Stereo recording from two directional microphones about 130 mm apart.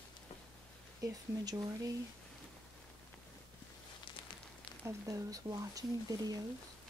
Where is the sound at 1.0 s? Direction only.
25° right (ahead or behind).